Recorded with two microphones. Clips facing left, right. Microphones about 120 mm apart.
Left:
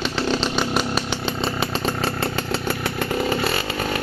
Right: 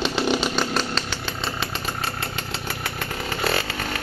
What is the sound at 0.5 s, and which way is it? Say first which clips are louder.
Chainsaw: left 2 dB; 5° left (ahead or behind).